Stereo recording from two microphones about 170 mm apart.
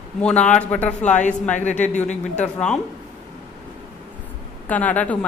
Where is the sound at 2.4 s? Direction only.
5° left (ahead or behind).